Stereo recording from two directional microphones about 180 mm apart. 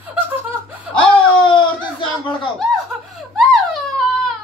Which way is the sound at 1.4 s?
25° left (ahead or behind).